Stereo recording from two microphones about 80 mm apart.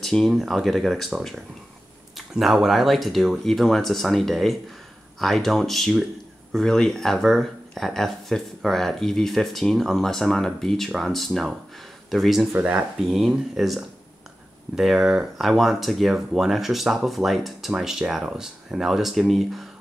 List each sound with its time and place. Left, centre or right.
0.0 s speech: centre
12.5 s speech: centre
13.0 s speech: centre